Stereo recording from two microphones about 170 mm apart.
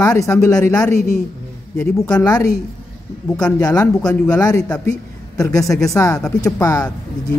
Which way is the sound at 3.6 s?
20° left (ahead or behind).